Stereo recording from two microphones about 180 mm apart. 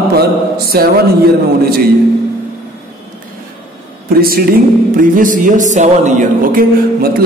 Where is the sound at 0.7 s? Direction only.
60° right (ahead or behind).